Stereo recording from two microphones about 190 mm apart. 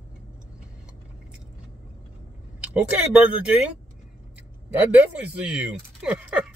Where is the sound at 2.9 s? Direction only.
5° right (ahead or behind).